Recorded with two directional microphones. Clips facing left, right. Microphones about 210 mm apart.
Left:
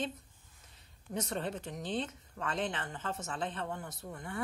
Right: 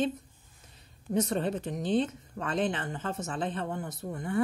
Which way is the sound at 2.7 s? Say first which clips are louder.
Right 5 dB; 50° right (ahead or behind).